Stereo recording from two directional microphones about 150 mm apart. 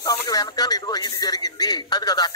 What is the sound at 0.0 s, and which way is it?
Speech, 25° left (ahead or behind).